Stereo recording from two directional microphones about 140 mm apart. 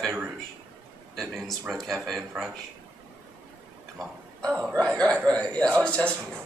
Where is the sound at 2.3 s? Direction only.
10° right (ahead or behind).